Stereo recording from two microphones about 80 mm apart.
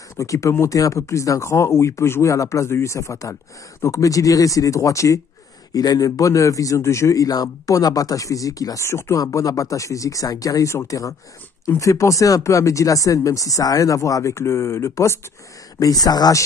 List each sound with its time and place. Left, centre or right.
0.2 s speech: left
8.8 s speech: left
9.2 s speech: left
15.8 s speech: left